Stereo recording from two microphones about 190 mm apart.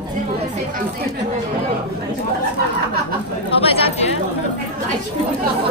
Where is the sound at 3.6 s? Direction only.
30° left (ahead or behind).